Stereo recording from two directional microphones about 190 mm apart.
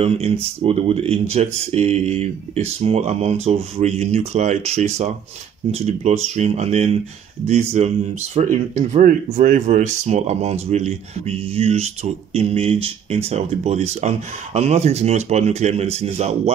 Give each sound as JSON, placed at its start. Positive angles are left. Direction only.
{"t": 0.0, "sound": "speech", "side_deg": -30}